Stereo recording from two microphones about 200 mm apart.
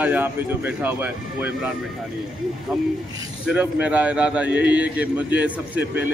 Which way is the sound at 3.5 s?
5° right (ahead or behind).